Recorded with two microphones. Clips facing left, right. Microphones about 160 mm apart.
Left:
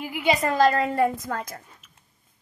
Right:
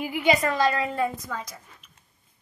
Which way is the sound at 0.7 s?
50° left (ahead or behind).